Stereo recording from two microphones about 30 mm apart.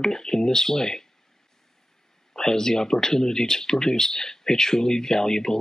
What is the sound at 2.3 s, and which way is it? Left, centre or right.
Speech, centre.